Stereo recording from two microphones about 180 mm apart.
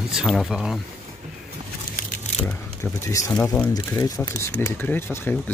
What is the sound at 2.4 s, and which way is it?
Speech, 15° left (ahead or behind).